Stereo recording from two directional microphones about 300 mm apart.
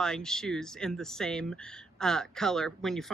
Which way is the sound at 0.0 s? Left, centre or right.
Centre.